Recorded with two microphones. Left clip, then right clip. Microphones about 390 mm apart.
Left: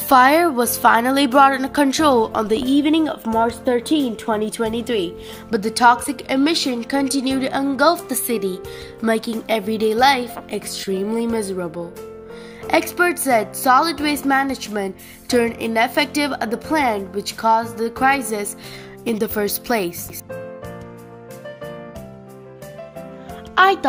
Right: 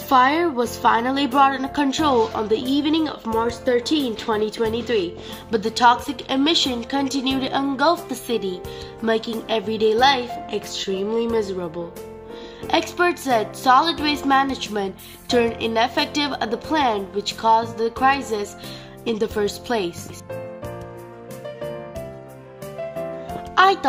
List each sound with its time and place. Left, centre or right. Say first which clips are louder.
0.1 s a woman's voice: left 4 dB; centre
12.7 s a woman's voice: left 2 dB; centre
23.5 s speech: left 1 dB; centre